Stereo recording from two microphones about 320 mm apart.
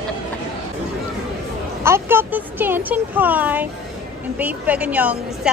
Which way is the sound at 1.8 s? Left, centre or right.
Centre.